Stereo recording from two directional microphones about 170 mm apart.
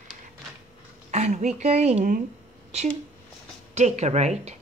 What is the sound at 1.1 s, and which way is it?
Speech, 40° right (ahead or behind).